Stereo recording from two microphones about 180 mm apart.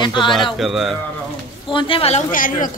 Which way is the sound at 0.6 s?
Centre (ahead or behind).